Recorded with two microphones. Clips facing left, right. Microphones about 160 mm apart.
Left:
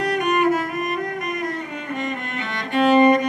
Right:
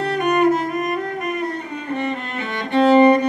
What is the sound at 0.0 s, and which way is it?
Music, 30° right (ahead or behind).